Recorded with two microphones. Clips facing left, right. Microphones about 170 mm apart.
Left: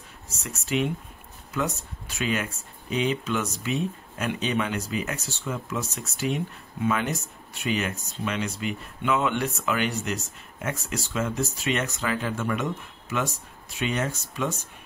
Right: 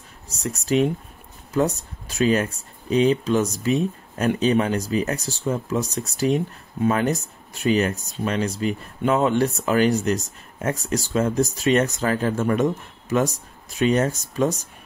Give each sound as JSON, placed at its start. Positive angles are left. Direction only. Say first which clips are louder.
{"t": 0.3, "sound": "speech", "louder": "right 7 dB", "side_deg": -35}